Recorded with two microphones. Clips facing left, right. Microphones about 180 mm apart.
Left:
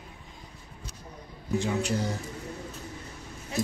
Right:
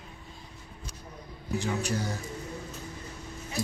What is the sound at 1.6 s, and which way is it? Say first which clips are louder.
Speech: left 2 dB; 25° left (ahead or behind).